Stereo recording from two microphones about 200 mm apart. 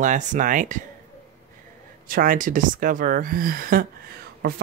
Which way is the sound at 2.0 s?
45° right (ahead or behind).